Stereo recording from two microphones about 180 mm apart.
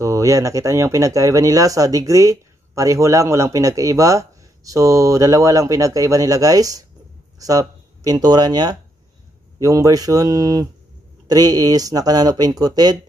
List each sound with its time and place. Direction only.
0.0 s speech: 15° right (ahead or behind)